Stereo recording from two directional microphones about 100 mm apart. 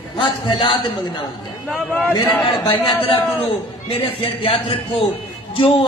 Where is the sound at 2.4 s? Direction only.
55° left (ahead or behind).